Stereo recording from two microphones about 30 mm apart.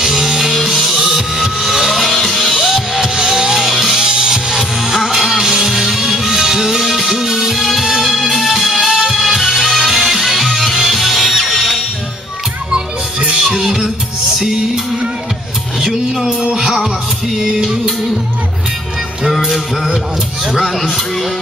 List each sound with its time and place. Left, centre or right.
0.0 s music: centre
2.1 s music: centre
2.6 s music: centre
3.2 s music: centre
3.6 s music: centre
4.0 s music: right; by 11.8 s centre
12.7 s music: right
13.5 s music: centre
15.8 s music: centre
19.3 s music: centre